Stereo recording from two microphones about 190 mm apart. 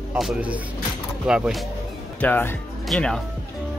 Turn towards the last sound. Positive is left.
turn(degrees=5)  # may be behind; listen again after turning